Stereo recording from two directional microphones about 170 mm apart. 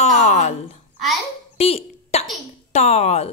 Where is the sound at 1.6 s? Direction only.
35° left (ahead or behind).